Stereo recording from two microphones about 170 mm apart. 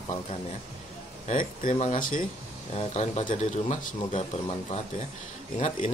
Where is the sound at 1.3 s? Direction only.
50° left (ahead or behind).